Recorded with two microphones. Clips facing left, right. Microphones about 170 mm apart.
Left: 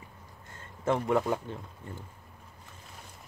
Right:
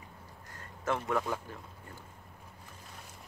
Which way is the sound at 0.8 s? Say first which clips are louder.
Left 5 dB; 20° left (ahead or behind).